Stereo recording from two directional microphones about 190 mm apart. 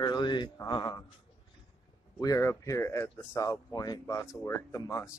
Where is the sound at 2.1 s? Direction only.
15° left (ahead or behind).